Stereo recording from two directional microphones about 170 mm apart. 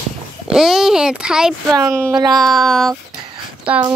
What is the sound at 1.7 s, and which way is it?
Speech, 15° right (ahead or behind).